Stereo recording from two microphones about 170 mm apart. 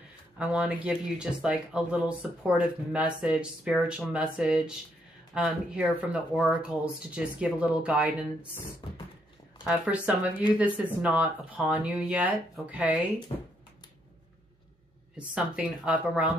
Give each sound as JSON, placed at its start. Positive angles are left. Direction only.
{"t": 0.4, "sound": "speech", "side_deg": -5}
{"t": 8.8, "sound": "a sound", "side_deg": 30}
{"t": 9.7, "sound": "speech", "side_deg": -5}
{"t": 15.1, "sound": "speech", "side_deg": -5}